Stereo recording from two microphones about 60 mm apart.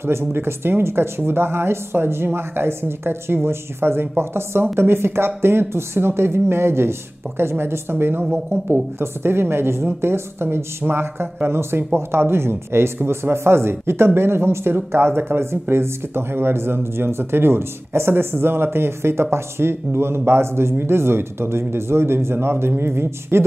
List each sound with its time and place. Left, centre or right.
0.0 s a woman's voice: right